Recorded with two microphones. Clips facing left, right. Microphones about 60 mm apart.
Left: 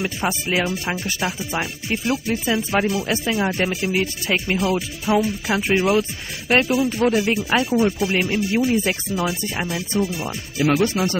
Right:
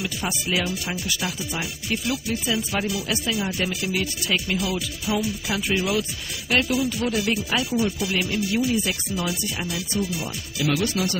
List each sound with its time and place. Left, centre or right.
0.0 s speech: left